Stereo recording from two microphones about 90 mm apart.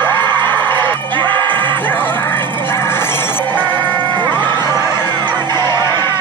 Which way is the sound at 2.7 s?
25° left (ahead or behind).